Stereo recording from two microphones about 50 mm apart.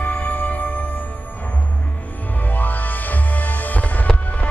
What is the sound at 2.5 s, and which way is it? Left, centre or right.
Music, left.